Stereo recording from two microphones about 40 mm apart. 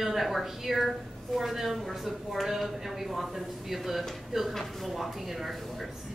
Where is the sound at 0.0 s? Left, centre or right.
Centre.